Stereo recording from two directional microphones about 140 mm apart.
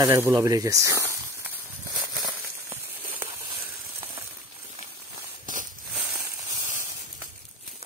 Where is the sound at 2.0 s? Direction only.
25° right (ahead or behind).